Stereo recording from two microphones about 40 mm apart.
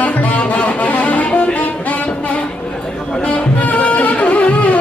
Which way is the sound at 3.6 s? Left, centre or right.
Left.